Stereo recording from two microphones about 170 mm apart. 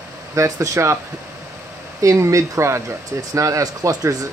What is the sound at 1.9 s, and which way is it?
Speech, 15° right (ahead or behind).